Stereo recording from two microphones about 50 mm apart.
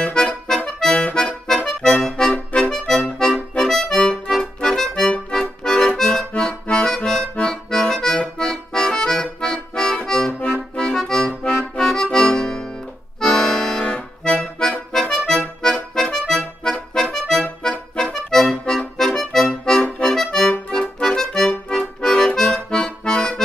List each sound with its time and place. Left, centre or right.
0.0 s music: centre
0.7 s accordion: centre
2.0 s music: centre
3.0 s accordion: centre
5.9 s music: centre
7.4 s accordion: centre
18.5 s music: centre
20.7 s accordion: centre